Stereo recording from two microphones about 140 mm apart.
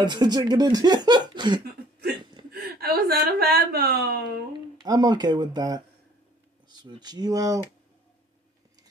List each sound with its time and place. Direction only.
0.0 s speech: 30° right (ahead or behind)
2.6 s speech: 90° right
4.7 s speech: 30° right (ahead or behind)